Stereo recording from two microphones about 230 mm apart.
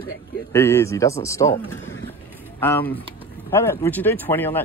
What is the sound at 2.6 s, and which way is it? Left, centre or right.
Speech, centre.